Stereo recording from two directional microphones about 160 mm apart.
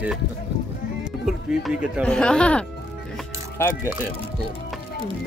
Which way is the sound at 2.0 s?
5° left (ahead or behind).